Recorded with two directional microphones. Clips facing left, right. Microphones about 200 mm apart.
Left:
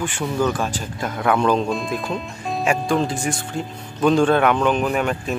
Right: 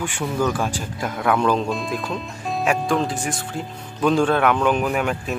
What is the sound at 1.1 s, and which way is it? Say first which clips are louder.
Speech: left 1 dB; centre (ahead or behind).